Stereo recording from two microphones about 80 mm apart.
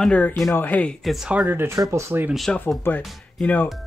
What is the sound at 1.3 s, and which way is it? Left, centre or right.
Speech, centre.